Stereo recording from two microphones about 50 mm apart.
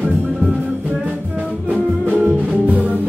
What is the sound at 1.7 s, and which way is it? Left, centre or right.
Music, right.